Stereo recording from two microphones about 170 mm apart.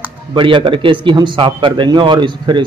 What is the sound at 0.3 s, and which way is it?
Speech, 30° right (ahead or behind).